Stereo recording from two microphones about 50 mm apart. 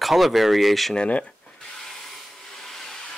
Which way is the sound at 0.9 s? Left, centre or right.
Left.